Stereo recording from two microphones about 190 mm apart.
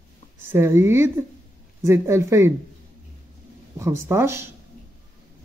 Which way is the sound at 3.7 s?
15° right (ahead or behind).